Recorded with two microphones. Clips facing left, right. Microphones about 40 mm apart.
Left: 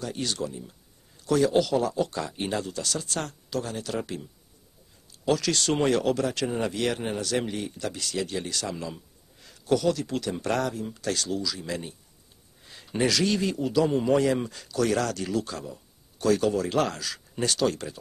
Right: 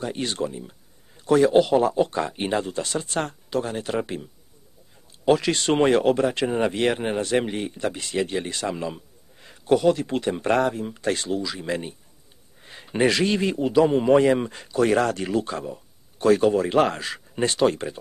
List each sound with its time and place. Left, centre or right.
0.0 s speech: right
5.2 s speech: right